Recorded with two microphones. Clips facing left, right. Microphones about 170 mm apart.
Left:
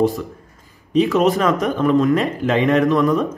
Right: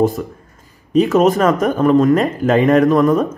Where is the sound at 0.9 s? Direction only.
45° right (ahead or behind).